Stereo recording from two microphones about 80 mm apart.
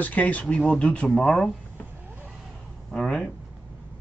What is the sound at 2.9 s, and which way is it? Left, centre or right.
Speech, centre.